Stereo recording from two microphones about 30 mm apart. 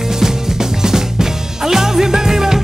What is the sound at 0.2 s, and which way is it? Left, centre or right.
Music, centre.